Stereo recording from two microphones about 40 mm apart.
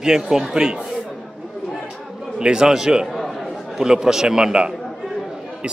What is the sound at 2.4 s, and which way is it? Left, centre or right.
Speech, right.